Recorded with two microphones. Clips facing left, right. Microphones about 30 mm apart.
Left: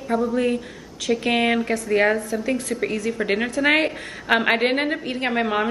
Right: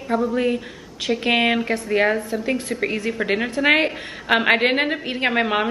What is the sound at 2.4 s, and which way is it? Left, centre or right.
Speech, right.